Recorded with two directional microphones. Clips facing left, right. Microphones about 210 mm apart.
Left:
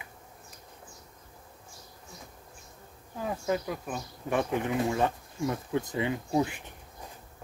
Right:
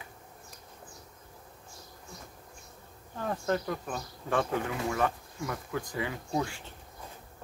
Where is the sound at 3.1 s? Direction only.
10° left (ahead or behind).